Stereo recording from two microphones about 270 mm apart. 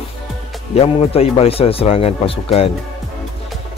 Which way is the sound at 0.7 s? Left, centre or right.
Left.